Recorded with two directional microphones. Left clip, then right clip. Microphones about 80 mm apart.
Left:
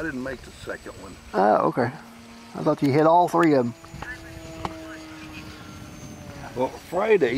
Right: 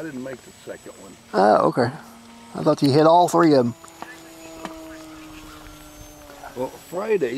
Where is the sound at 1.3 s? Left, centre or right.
Right.